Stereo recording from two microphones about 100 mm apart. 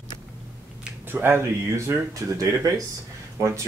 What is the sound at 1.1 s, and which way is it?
Speech, 20° right (ahead or behind).